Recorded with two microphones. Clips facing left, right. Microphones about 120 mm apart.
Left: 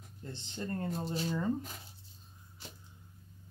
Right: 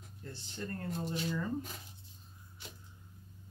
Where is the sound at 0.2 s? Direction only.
20° left (ahead or behind).